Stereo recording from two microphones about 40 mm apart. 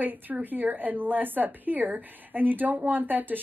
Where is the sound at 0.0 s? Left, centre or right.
Right.